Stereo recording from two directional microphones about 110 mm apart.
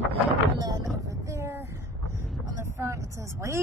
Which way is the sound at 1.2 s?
25° right (ahead or behind).